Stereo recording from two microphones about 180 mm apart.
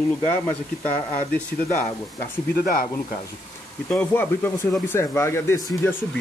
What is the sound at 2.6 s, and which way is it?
Speech, 55° left (ahead or behind).